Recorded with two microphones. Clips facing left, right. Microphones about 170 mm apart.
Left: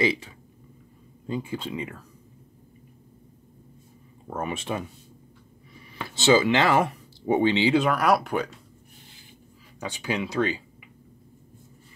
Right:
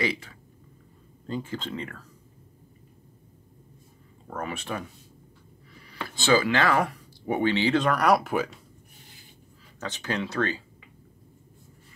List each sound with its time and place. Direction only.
0.0 s speech: 20° left (ahead or behind)
4.3 s speech: 20° left (ahead or behind); by 8.5 s centre (ahead or behind)
9.8 s speech: 10° left (ahead or behind)